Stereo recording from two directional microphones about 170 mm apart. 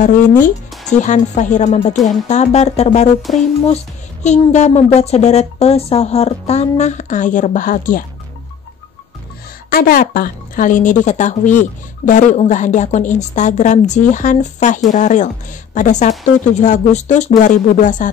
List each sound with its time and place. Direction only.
0.4 s a woman's voice: 45° left (ahead or behind)
3.2 s speech: centre (ahead or behind)
3.6 s a child's voice: 40° left (ahead or behind)
9.7 s a woman's voice: 55° left (ahead or behind)